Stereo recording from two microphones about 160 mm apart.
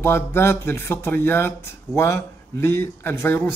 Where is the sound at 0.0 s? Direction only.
15° left (ahead or behind).